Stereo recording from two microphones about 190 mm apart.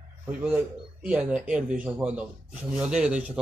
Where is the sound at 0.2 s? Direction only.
10° right (ahead or behind).